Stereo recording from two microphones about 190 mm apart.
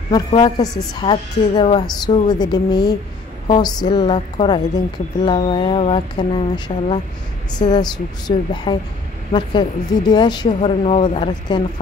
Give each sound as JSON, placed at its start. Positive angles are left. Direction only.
{"t": 0.1, "sound": "a woman's voice", "side_deg": 20}
{"t": 2.2, "sound": "a woman's voice", "side_deg": 20}
{"t": 10.5, "sound": "speech", "side_deg": 35}